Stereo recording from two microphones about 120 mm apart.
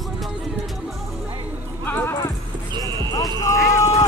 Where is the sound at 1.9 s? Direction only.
20° left (ahead or behind).